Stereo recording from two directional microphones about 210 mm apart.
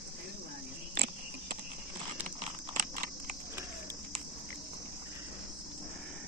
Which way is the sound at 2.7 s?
40° right (ahead or behind).